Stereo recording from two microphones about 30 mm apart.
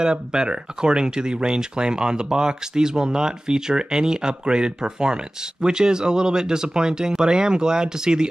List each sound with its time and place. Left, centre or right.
0.0 s speech: right